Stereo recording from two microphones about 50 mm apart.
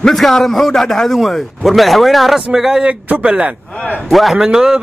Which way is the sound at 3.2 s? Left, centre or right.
Centre.